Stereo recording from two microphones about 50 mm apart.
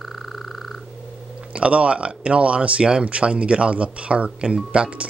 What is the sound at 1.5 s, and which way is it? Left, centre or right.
Speech, right.